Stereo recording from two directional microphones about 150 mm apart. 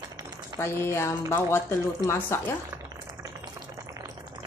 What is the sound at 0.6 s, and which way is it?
Speech, 15° left (ahead or behind).